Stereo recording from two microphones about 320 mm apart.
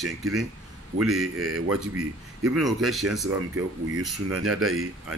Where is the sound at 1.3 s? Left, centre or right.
Right.